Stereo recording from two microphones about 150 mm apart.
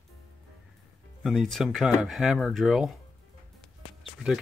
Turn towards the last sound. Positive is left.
turn(degrees=0)  # may be behind; listen again after turning